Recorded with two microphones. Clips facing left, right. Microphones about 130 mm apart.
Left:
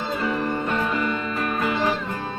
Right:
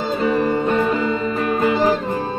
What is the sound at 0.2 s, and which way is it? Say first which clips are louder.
Music: right 8 dB; 30° right (ahead or behind).